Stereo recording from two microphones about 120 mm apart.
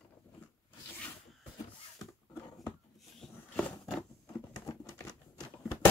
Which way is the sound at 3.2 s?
5° left (ahead or behind).